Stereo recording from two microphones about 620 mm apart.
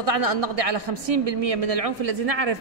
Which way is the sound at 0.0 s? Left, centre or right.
Right.